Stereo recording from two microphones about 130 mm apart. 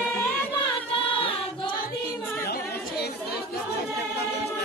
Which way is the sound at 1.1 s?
45° left (ahead or behind).